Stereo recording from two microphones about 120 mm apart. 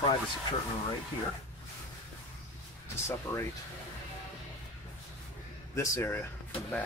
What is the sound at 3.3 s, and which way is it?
Speech, 20° left (ahead or behind).